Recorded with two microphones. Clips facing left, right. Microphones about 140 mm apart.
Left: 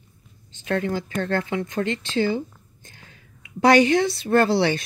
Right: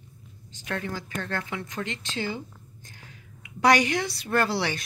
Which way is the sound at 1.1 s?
50° left (ahead or behind).